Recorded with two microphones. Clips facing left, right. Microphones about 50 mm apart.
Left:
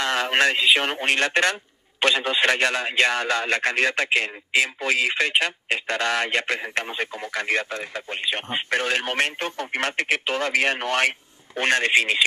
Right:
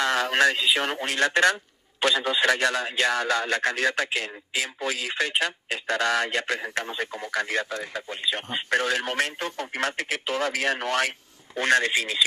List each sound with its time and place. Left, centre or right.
0.0 s a man's voice: left